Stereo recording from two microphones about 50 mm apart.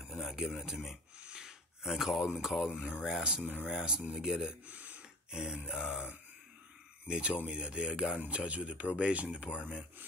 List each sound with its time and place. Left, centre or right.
0.1 s a sound: centre
0.7 s grunt: centre
1.2 s a sound: centre
2.8 s grunt: centre
3.6 s speech: centre
4.1 s grunt: centre
4.6 s a sound: right
5.3 s grunt: centre
7.1 s speech: right